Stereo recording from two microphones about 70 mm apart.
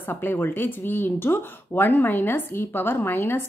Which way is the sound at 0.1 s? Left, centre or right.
Left.